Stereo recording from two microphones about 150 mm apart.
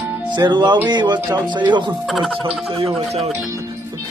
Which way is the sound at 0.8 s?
30° right (ahead or behind).